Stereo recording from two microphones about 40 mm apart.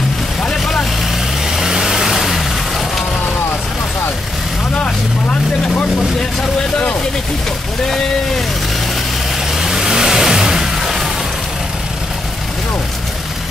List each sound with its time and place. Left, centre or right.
1.5 s vehicle: centre
4.7 s vehicle: left
9.5 s vehicle: centre